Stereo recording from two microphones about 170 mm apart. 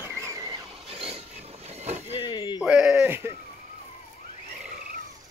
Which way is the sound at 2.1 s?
30° left (ahead or behind).